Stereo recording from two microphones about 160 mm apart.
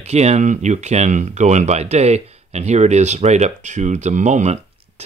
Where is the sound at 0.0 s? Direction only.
45° right (ahead or behind).